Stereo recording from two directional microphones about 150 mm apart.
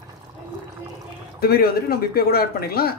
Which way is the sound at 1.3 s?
90° left.